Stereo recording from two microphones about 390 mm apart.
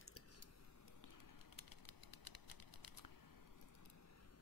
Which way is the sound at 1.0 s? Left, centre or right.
Left.